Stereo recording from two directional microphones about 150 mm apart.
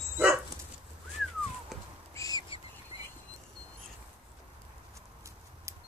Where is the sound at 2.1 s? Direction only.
25° left (ahead or behind).